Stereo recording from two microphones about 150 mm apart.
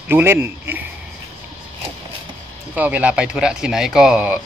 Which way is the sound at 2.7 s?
10° right (ahead or behind).